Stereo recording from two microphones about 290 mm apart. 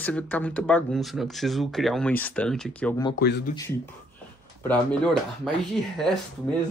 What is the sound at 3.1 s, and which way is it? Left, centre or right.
Speech, left.